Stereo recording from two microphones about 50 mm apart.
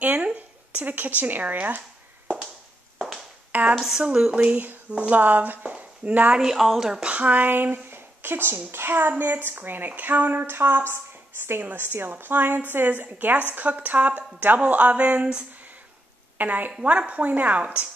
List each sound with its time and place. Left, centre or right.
0.0 s a sound: right
3.8 s speech: centre; by 6.3 s right
6.5 s speech: centre
6.8 s speech: centre
7.1 s a woman's voice: right
7.5 s speech: right
8.7 s a sound: right
9.2 s a woman's voice: right
10.4 s a sound: right
11.6 s a woman's voice: right
16.3 s a woman's voice: right